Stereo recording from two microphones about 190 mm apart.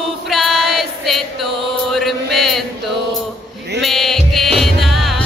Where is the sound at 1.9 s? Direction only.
Centre (ahead or behind).